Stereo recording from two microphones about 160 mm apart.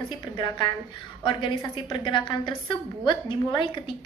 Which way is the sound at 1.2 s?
30° left (ahead or behind).